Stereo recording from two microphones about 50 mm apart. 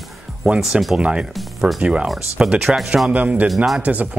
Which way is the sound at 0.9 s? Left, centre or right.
Centre.